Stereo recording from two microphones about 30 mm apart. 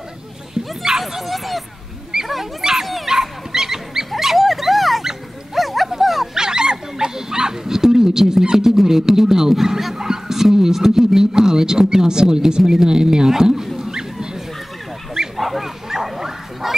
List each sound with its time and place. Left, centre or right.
0.6 s bow-wow: right
1.0 s speech: centre
2.1 s dog: centre
2.6 s speech: centre
3.1 s dog: centre
4.1 s dog: centre
6.3 s dog: right
8.8 s speech: centre
9.9 s speech: centre
13.7 s dog: centre
15.3 s bow-wow: centre